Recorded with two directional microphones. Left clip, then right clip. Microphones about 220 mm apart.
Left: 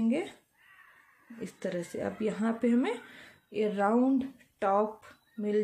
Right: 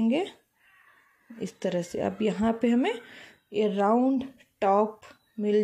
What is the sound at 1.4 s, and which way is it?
Speech, 25° right (ahead or behind).